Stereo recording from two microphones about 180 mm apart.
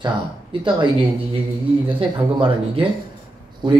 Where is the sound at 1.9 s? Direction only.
30° right (ahead or behind).